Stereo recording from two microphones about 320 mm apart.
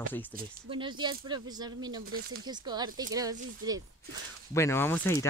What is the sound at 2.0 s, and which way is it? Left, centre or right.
Speech, right.